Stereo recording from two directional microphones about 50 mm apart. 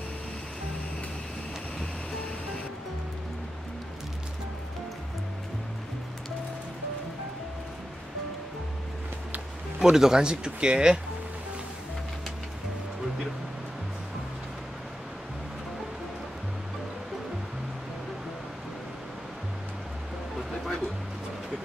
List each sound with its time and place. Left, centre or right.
9.8 s speech: centre